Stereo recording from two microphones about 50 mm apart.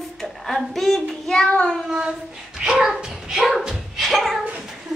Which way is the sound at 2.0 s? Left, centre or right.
Centre.